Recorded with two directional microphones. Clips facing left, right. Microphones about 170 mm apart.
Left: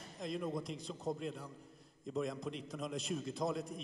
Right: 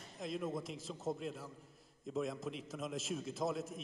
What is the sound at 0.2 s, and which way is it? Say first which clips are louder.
A man's voice: left 1 dB; centre (ahead or behind).